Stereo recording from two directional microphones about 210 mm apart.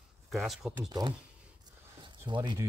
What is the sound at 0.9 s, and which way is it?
Speech, 20° right (ahead or behind).